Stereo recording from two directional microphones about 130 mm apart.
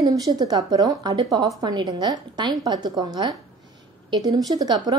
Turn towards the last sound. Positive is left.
turn(degrees=-30)  # may be behind; listen again after turning